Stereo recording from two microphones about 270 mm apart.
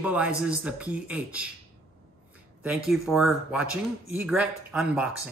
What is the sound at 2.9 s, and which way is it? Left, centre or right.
A man's voice, centre.